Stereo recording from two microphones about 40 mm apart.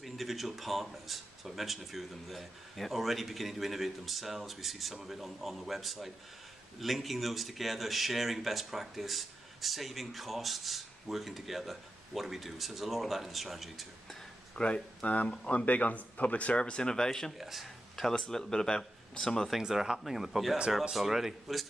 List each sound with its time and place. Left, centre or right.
0.0 s speech: centre
14.5 s speech: left
17.4 s speech: centre
18.2 s speech: centre
19.6 s speech: centre